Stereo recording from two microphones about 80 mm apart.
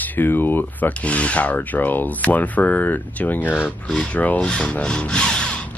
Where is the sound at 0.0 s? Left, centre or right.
Left.